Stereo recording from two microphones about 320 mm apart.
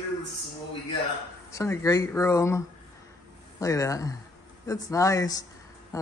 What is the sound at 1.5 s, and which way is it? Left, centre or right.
Speech, centre.